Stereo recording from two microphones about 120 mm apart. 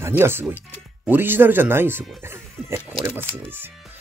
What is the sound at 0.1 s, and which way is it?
Speech, 20° right (ahead or behind).